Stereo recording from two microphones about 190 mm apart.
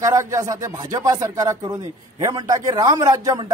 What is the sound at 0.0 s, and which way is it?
A man's voice, 15° right (ahead or behind).